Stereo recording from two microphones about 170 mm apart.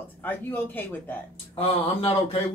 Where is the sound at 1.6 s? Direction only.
35° left (ahead or behind).